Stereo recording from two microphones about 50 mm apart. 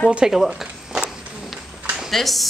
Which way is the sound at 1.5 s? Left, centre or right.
Centre.